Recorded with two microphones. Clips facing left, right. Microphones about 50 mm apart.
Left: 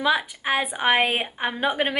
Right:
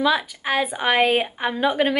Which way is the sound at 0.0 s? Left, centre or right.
Centre.